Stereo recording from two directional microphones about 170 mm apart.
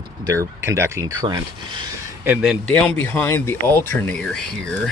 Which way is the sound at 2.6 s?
5° left (ahead or behind).